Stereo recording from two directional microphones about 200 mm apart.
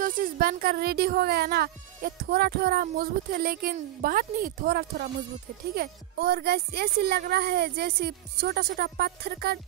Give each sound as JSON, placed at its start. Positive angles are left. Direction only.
{"t": 0.0, "sound": "a woman's voice", "side_deg": -45}